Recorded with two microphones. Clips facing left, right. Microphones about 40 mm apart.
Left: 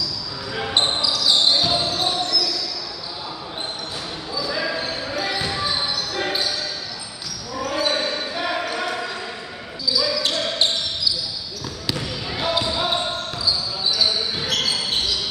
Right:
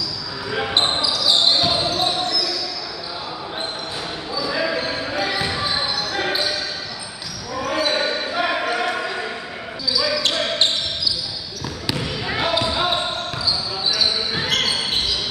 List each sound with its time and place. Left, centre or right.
0.5 s basketball bounce: centre
4.3 s basketball bounce: centre
7.5 s basketball bounce: centre
12.4 s basketball bounce: centre
14.3 s basketball bounce: right